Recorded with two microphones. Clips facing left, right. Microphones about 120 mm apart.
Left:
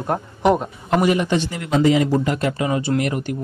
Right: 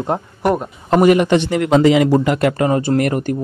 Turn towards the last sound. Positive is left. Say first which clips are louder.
# right 5 dB
turn(degrees=-45)  # may be behind; listen again after turning